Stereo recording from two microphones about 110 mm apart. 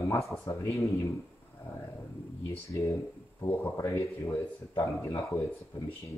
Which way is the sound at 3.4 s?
25° left (ahead or behind).